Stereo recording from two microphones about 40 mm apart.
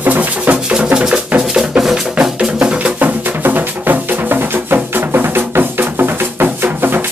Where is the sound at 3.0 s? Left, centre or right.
Right.